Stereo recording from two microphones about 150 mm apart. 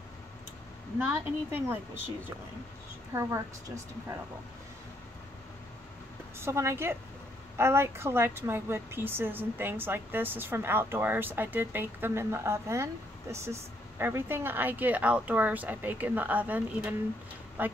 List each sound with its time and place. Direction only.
0.9 s a woman's voice: 15° right (ahead or behind)
3.2 s a woman's voice: 20° right (ahead or behind)
6.4 s a woman's voice: 15° right (ahead or behind)